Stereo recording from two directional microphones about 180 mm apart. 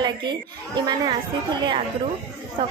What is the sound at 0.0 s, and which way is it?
A woman's voice, 25° right (ahead or behind).